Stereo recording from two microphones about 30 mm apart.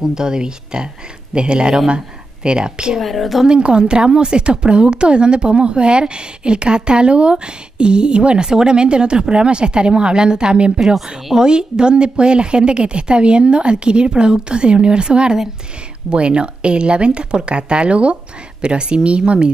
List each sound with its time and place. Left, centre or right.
0.0 s a woman's voice: right
3.0 s a woman's voice: centre
3.4 s a woman's voice: right